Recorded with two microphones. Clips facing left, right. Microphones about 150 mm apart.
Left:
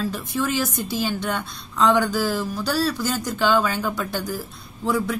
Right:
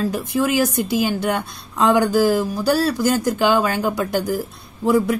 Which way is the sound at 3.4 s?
10° right (ahead or behind).